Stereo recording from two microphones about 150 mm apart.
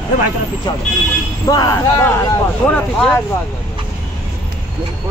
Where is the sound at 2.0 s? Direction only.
10° left (ahead or behind).